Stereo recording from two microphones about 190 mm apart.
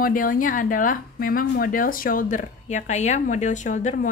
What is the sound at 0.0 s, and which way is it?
Speech, 45° left (ahead or behind).